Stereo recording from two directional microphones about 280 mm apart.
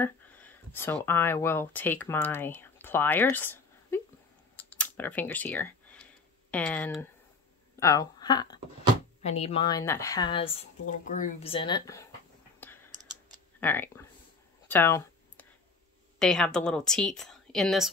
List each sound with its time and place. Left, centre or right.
0.0 s speech: centre
4.6 s a sound: centre
6.5 s a woman's voice: centre
12.5 s clicking: centre
13.6 s speech: centre
14.7 s a sound: centre
16.2 s a woman's voice: centre